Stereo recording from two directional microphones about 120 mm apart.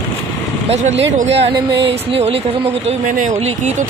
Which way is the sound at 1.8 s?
50° right (ahead or behind).